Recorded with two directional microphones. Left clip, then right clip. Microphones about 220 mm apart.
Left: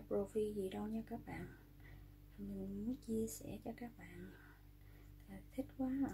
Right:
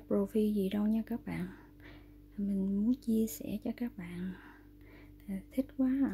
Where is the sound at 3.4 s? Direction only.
50° right (ahead or behind).